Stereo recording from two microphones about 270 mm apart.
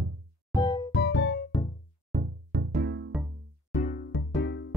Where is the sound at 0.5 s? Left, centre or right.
Centre.